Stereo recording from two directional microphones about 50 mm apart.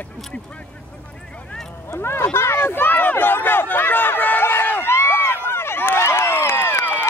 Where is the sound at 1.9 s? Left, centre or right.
Left.